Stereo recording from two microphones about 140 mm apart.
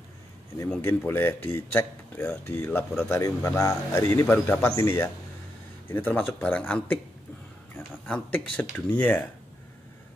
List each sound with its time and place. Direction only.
0.7 s a man's voice: 15° left (ahead or behind)